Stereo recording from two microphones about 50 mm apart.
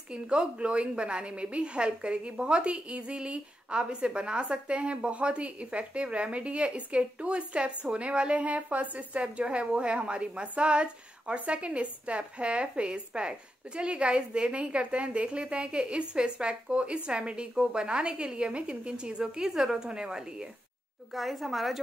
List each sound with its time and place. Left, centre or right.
0.1 s a woman's voice: centre
21.1 s a woman's voice: centre